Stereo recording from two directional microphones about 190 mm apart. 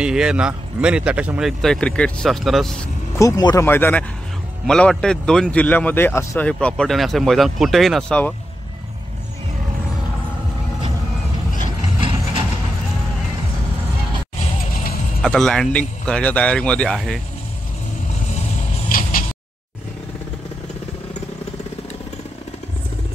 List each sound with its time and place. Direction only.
0.0 s speech: 5° right (ahead or behind)
3.2 s speech: 20° left (ahead or behind)
15.2 s speech: centre (ahead or behind)
18.9 s a sound: 50° left (ahead or behind)